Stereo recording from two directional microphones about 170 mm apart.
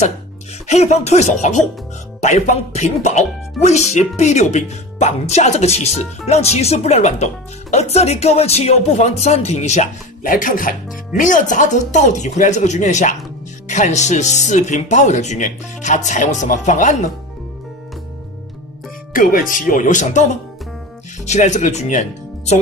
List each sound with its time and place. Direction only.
0.7 s speech: 40° left (ahead or behind)
19.1 s speech: 55° left (ahead or behind)
21.3 s speech: 45° left (ahead or behind)